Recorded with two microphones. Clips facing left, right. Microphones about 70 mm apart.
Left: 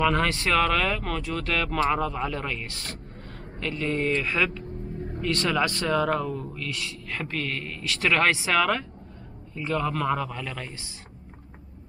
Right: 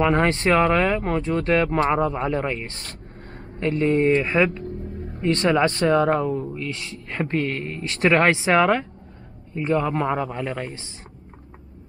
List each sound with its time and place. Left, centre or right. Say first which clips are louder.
0.0 s speech: right 4 dB; right